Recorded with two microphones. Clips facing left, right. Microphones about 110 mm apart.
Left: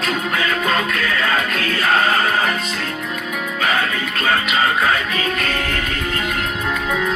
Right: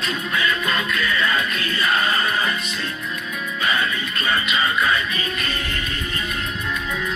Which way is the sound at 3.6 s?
85° left.